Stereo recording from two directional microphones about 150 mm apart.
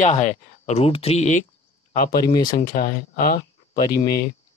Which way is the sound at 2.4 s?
75° left (ahead or behind).